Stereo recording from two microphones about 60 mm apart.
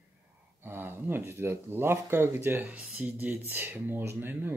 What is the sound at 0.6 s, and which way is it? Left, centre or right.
Speech, right.